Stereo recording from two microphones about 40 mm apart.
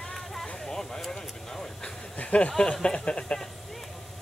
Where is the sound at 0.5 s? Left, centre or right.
Centre.